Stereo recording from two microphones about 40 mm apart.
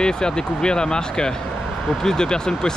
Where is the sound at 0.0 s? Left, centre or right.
Centre.